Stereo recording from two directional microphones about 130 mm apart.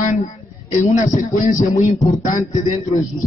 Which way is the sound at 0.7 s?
60° left (ahead or behind).